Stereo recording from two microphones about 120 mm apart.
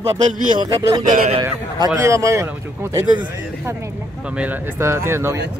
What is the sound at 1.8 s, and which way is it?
Speech, 25° right (ahead or behind).